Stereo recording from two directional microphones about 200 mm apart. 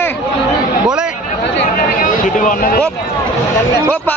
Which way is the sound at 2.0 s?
40° left (ahead or behind).